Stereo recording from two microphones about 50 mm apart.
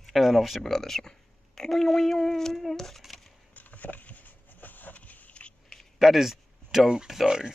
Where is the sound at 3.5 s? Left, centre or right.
Left.